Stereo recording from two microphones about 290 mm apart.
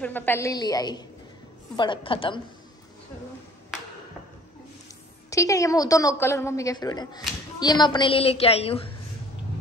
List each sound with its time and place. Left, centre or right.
0.0 s a woman's voice: centre
5.3 s a woman's voice: centre